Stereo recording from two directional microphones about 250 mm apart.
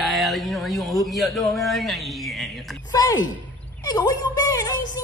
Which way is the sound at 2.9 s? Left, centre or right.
Centre.